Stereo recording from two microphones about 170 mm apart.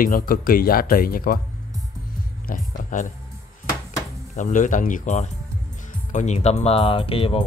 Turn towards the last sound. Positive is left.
turn(degrees=35)  # may be behind; listen again after turning